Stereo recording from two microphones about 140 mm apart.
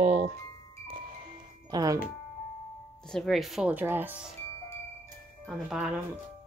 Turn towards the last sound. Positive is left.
turn(degrees=-5)  # may be behind; listen again after turning